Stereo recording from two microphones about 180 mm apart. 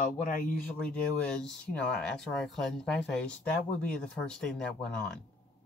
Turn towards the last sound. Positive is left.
turn(degrees=5)  # may be behind; listen again after turning